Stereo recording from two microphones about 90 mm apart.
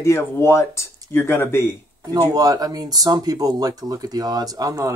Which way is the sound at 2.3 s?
45° right (ahead or behind).